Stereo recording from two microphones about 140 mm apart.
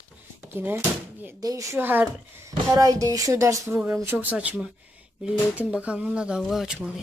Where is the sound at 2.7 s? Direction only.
25° right (ahead or behind); by 6.7 s centre (ahead or behind).